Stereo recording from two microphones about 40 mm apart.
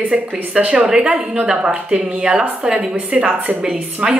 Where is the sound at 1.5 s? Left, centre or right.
Right.